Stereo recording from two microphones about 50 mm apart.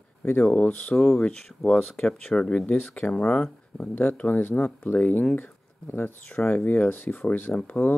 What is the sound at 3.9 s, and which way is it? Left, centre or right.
Speech, left.